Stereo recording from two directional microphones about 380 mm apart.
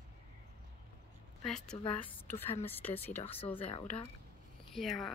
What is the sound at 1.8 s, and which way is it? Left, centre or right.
A woman's voice, centre.